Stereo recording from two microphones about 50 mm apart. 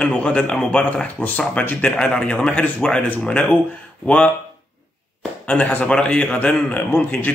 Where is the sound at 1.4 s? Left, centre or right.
Left.